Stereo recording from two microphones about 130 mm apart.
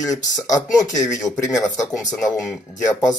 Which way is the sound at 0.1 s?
30° left (ahead or behind).